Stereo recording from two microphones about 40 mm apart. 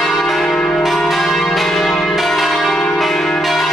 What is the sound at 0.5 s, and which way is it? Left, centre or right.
Change ringing, left.